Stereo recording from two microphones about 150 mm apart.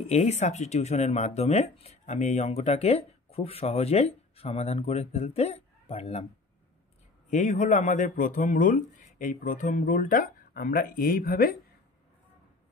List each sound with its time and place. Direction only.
0.0 s speech: 45° left (ahead or behind)
7.2 s speech: 55° left (ahead or behind); by 11.5 s 75° left (ahead or behind)